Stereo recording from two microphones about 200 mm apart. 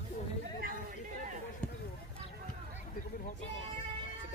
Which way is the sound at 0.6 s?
45° right (ahead or behind).